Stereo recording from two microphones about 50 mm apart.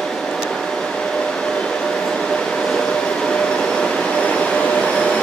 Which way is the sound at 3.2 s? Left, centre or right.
Left.